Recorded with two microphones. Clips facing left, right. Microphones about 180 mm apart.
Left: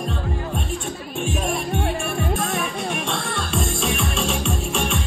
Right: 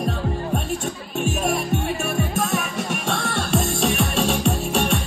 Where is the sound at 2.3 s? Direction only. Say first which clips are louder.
Right 1 dB; 40° right (ahead or behind).